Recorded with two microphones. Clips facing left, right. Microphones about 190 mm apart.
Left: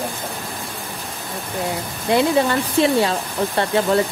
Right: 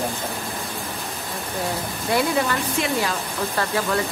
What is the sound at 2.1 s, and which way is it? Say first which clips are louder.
Speech: left 5 dB; 25° left (ahead or behind).